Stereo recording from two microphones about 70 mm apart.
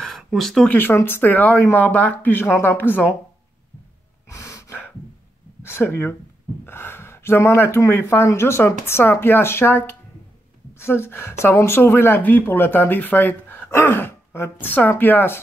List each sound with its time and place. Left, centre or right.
0.0 s a sound: centre
0.7 s speech: left
4.3 s gasp: left
5.6 s speech: left